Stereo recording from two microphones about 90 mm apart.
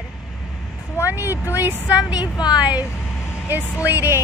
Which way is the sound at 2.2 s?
50° left (ahead or behind).